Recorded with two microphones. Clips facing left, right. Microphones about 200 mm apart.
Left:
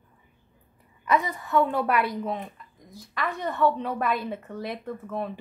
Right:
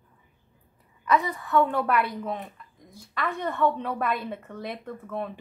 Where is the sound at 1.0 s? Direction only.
15° left (ahead or behind).